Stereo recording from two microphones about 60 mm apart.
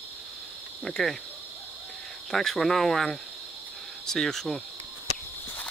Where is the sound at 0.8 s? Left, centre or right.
Centre.